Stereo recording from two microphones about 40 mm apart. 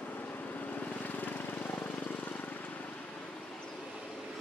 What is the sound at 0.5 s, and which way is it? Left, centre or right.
Vehicle, left.